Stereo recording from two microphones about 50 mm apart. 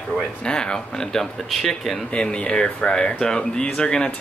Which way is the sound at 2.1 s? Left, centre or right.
Left.